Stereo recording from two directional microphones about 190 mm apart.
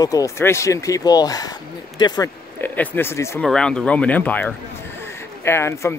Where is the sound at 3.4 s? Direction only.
5° left (ahead or behind).